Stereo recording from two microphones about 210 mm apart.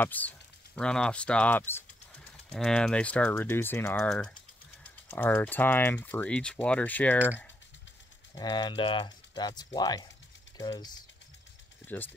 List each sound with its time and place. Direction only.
0.0 s speech: 10° left (ahead or behind)
8.4 s speech: 20° left (ahead or behind)